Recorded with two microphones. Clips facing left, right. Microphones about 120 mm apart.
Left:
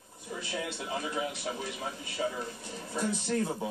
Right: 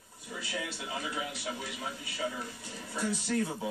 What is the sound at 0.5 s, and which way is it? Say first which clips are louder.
Speech: left 2 dB; 30° left (ahead or behind).